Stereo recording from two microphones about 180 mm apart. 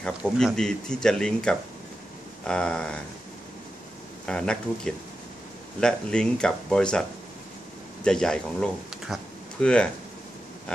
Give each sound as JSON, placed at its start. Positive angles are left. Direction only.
{"t": 0.2, "sound": "speech", "side_deg": 0}
{"t": 4.3, "sound": "speech", "side_deg": 5}